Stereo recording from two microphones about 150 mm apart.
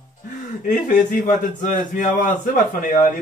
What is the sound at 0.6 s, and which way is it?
A man's voice, 65° left (ahead or behind).